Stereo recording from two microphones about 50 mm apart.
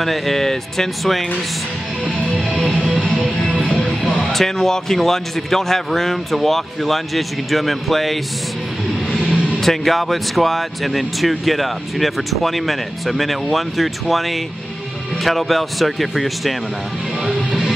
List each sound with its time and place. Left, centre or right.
0.0 s speech: centre
3.6 s music: left
4.2 s speech: centre
9.6 s speech: centre
17.2 s music: centre
17.5 s music: centre